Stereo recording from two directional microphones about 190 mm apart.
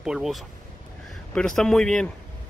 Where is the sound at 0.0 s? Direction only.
5° right (ahead or behind).